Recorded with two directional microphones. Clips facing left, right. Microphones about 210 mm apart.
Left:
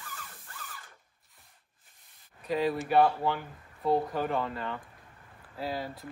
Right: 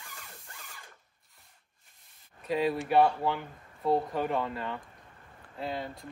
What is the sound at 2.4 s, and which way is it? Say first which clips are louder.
Speech: even; centre (ahead or behind).